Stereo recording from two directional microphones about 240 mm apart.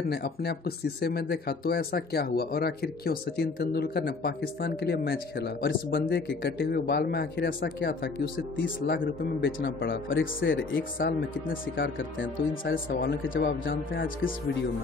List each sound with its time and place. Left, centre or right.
0.1 s speech: left
11.0 s speech: left
11.7 s speech: left